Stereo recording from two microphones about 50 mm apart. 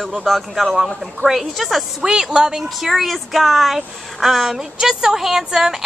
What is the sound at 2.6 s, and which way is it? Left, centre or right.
Speech, centre.